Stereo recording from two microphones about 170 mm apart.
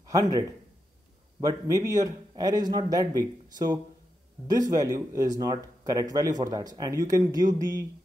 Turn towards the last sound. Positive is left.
turn(degrees=-20)  # may be behind; listen again after turning